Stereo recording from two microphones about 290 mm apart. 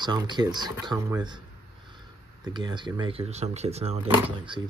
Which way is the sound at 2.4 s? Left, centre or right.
Centre.